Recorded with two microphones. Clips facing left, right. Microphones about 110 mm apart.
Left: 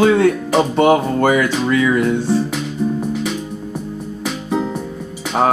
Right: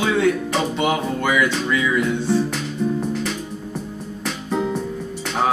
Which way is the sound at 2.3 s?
Centre (ahead or behind).